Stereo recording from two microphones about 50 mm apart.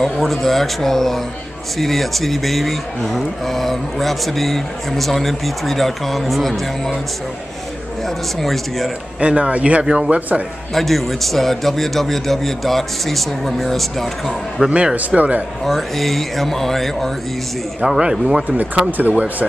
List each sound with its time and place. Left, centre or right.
0.0 s speech: centre
8.4 s speech: centre
9.2 s a man's voice: right
10.7 s speech: centre
14.7 s a man's voice: right
15.6 s speech: centre
17.8 s speech: centre
18.9 s speech: right